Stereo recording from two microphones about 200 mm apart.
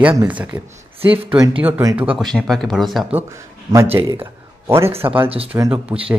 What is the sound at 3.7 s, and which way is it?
Speech, 10° right (ahead or behind).